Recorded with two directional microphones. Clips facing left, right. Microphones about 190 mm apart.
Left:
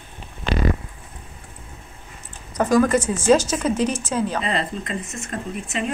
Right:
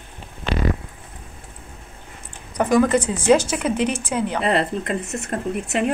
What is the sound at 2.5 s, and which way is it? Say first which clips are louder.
Speech: even; 15° right (ahead or behind).